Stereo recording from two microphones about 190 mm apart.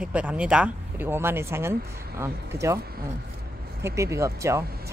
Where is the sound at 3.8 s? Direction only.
15° right (ahead or behind).